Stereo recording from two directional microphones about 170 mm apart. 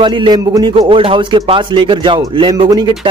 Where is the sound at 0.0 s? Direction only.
30° right (ahead or behind).